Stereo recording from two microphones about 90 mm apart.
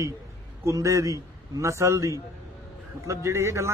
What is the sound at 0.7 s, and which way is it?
Speech, 35° right (ahead or behind).